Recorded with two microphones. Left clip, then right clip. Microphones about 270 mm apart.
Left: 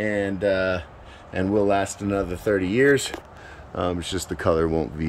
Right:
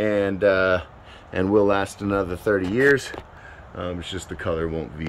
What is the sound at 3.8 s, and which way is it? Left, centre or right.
Speech, centre.